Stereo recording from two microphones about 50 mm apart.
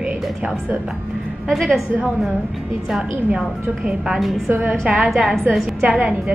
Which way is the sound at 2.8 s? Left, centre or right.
Centre.